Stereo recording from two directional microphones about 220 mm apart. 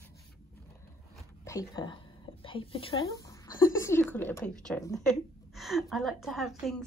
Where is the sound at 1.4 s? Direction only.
15° left (ahead or behind).